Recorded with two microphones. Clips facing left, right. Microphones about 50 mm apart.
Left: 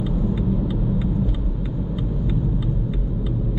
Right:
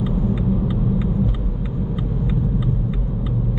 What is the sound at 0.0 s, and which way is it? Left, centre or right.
Vehicle, centre.